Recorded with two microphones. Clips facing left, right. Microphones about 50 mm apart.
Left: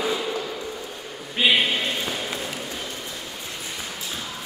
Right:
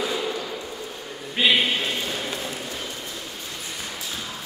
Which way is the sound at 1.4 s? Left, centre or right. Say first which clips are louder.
Even; centre.